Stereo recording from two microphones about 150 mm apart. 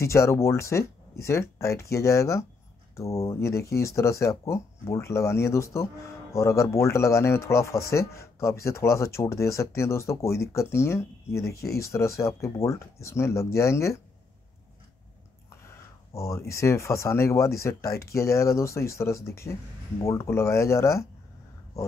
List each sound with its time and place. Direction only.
0.0 s speech: 20° left (ahead or behind)
15.5 s speech: 20° left (ahead or behind)